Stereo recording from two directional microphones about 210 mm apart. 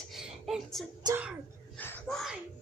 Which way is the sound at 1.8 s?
5° left (ahead or behind).